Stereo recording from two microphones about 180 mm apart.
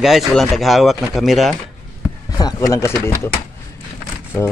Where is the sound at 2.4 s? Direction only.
20° left (ahead or behind).